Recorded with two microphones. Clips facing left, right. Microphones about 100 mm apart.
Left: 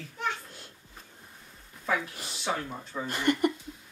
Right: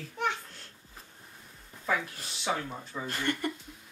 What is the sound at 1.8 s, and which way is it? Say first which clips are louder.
Speech: left 1 dB; centre (ahead or behind).